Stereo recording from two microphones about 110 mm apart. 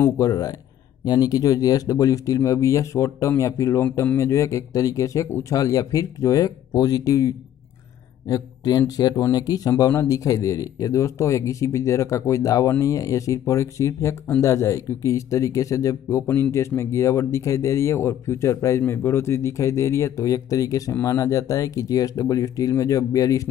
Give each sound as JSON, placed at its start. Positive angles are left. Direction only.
{"t": 0.0, "sound": "speech", "side_deg": 35}